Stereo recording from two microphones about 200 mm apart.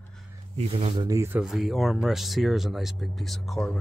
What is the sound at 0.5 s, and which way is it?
Speech, 30° right (ahead or behind).